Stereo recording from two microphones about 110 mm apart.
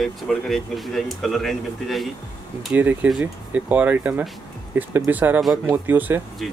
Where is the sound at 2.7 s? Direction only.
15° right (ahead or behind).